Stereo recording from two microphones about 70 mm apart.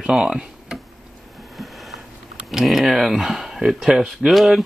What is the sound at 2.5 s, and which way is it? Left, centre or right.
Speech, centre.